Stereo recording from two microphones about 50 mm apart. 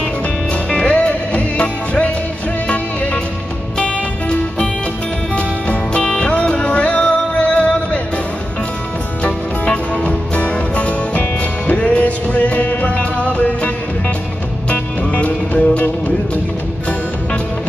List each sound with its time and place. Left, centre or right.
0.5 s music: left
9.2 s music: left
14.7 s music: left